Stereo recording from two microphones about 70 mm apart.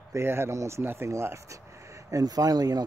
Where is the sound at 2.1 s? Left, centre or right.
Right.